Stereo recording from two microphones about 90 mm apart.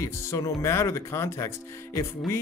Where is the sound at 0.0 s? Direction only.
35° left (ahead or behind).